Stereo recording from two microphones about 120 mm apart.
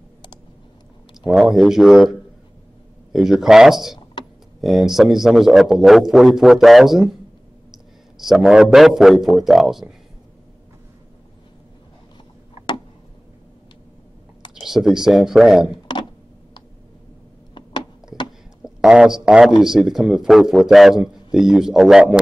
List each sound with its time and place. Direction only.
1.2 s a man's voice: 5° right (ahead or behind)
14.5 s speech: 5° right (ahead or behind)
17.6 s a sound: 40° left (ahead or behind)
18.6 s speech: 5° right (ahead or behind)